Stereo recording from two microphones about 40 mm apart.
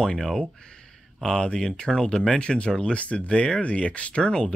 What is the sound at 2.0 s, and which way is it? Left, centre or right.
Speech, left.